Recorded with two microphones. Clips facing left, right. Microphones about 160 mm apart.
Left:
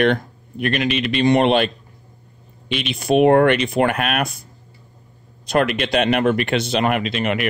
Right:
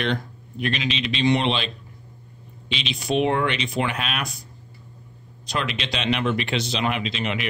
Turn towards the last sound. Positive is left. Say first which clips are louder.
# left 6 dB
turn(degrees=55)  # may be behind; listen again after turning